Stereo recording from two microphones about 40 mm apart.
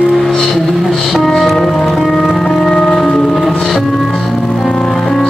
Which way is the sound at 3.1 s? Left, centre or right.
Left.